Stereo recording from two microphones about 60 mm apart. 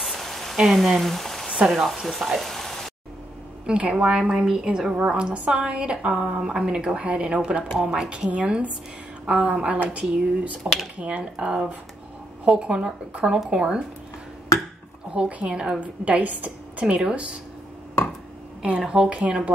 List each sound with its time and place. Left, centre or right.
0.0 s a sound: centre
0.7 s speech: centre
3.6 s a woman's voice: centre
15.1 s a woman's voice: centre
18.9 s a woman's voice: centre